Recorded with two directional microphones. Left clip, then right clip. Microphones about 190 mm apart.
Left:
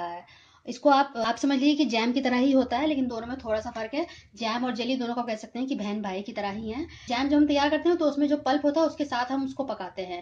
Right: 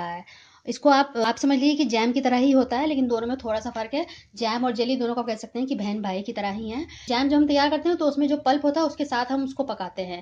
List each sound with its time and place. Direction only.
0.7 s a woman's voice: 35° right (ahead or behind)